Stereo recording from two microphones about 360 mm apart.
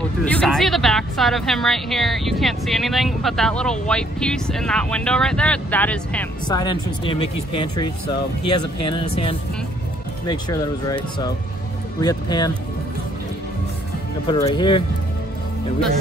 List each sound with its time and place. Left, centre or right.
0.2 s speech: centre
8.4 s speech: left
8.9 s speech: centre
14.2 s speech: centre